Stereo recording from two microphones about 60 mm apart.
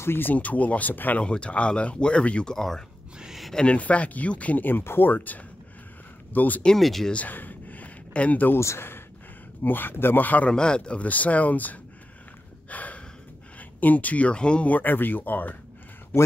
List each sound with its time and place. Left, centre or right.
0.0 s speech: left
0.3 s speech: left
1.2 s speech: centre
3.2 s a sound: centre
3.5 s speech: left
6.8 s speech: centre
7.1 s a sound: left
8.5 s speech: left
10.5 s speech: centre
12.6 s gasp: left
13.6 s speech: left